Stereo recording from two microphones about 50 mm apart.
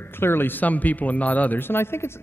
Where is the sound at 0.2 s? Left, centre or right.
Left.